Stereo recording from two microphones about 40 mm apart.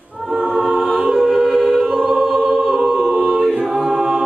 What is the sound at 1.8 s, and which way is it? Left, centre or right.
Choir, centre.